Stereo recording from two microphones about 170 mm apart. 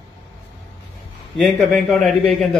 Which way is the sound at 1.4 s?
5° left (ahead or behind).